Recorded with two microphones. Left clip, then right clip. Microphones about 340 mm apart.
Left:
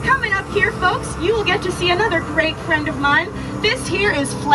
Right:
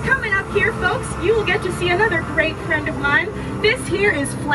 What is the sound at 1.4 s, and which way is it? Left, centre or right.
A woman's voice, centre.